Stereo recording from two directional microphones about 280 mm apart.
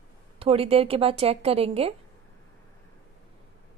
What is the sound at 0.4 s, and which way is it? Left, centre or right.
A woman's voice, centre.